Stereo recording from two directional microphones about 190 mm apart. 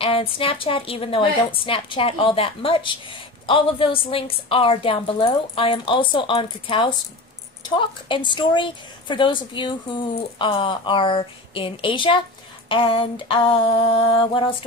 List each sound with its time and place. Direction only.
0.0 s a woman's voice: 30° left (ahead or behind)